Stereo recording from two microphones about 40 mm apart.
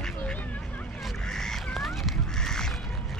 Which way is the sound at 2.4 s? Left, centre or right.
Centre.